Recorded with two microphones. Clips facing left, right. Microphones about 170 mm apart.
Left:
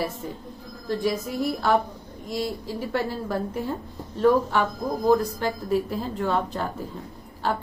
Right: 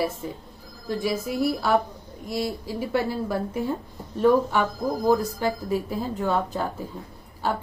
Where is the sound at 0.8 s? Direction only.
5° right (ahead or behind).